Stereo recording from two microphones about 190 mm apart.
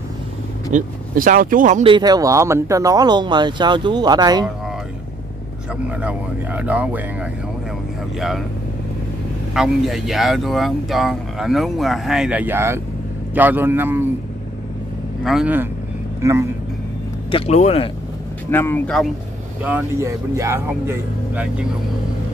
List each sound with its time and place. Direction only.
0.7 s speech: 45° right (ahead or behind)
1.9 s speech: 20° right (ahead or behind)
5.9 s speech: 5° right (ahead or behind)
9.5 s speech: centre (ahead or behind)
15.2 s speech: 5° right (ahead or behind)
17.3 s speech: 30° left (ahead or behind)
18.5 s speech: 10° left (ahead or behind)
19.6 s speech: 10° right (ahead or behind)